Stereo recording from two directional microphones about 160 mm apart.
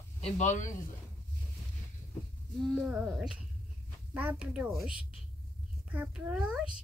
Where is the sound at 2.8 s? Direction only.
5° right (ahead or behind).